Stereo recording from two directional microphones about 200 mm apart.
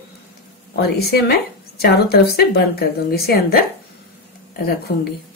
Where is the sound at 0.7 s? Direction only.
50° left (ahead or behind).